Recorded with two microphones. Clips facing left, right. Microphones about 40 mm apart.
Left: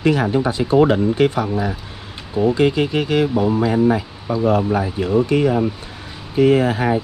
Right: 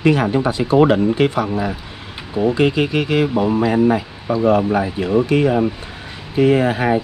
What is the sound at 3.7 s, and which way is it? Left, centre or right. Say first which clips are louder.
Speech: right 1 dB; right.